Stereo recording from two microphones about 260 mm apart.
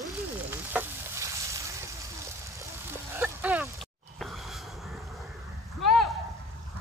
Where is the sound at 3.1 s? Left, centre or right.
Centre.